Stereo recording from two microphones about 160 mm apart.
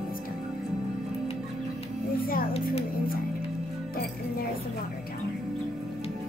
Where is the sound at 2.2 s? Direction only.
65° left (ahead or behind).